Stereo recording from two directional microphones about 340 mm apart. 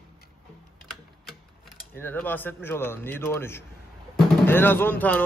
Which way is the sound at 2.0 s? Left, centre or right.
Centre.